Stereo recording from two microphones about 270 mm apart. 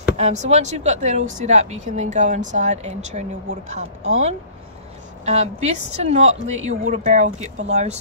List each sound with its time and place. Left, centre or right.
0.2 s speech: right